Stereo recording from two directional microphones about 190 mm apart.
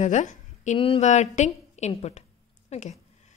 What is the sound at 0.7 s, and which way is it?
A woman's voice, 25° left (ahead or behind).